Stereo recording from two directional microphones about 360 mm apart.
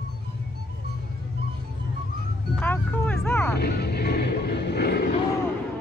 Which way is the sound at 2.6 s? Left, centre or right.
Centre.